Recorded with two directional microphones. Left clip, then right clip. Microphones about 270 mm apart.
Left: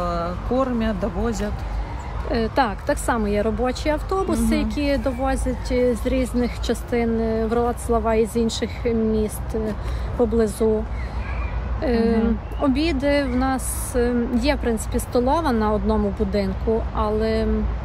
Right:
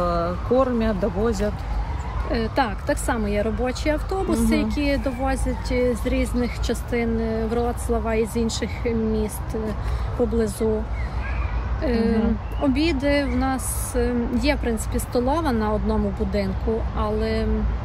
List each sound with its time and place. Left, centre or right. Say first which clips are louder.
0.0 s speech: right 2 dB; centre
2.3 s speech: left 2 dB; centre
11.8 s speech: left 2 dB; centre